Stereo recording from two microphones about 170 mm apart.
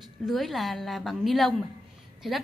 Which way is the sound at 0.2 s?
Centre (ahead or behind).